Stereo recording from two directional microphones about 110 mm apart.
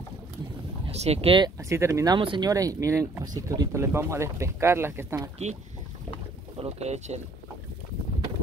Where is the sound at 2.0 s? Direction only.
45° right (ahead or behind).